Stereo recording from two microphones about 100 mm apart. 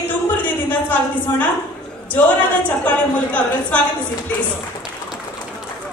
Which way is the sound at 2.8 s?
15° left (ahead or behind).